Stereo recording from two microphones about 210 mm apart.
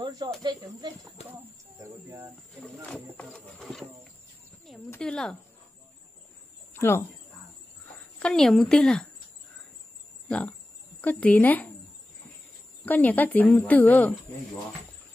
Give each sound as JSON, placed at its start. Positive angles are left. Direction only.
{"t": 0.4, "sound": "speech", "side_deg": -20}
{"t": 2.0, "sound": "bird", "side_deg": -15}
{"t": 2.6, "sound": "a sound", "side_deg": 5}
{"t": 6.7, "sound": "speech", "side_deg": 10}
{"t": 8.2, "sound": "a woman's voice", "side_deg": 5}
{"t": 10.2, "sound": "speech", "side_deg": 5}
{"t": 12.8, "sound": "speech", "side_deg": 10}